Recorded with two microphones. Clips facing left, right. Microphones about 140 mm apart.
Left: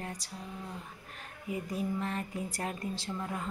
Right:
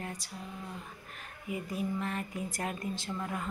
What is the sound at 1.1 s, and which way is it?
Speech, 35° left (ahead or behind).